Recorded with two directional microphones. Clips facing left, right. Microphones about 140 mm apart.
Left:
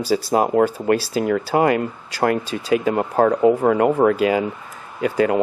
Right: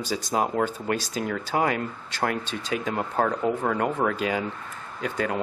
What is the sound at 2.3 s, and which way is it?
Speech, 5° left (ahead or behind).